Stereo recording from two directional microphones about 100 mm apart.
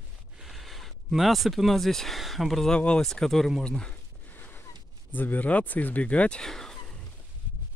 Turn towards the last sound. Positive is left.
turn(degrees=5)  # may be behind; listen again after turning